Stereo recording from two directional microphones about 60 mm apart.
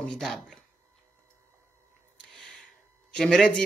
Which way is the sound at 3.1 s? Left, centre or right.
Centre.